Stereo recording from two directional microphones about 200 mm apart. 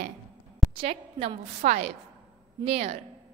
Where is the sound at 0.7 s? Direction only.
30° right (ahead or behind).